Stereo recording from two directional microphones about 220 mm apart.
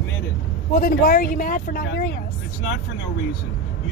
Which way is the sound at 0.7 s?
45° left (ahead or behind).